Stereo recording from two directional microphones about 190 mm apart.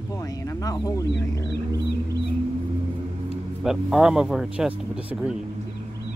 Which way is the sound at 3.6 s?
Centre (ahead or behind).